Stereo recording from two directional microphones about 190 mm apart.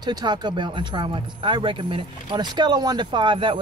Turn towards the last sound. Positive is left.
turn(degrees=-25)  # may be behind; listen again after turning